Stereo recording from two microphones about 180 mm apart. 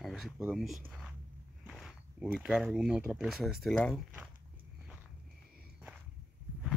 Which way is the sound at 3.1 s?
5° right (ahead or behind).